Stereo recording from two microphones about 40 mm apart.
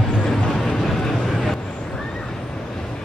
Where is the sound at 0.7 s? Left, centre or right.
Centre.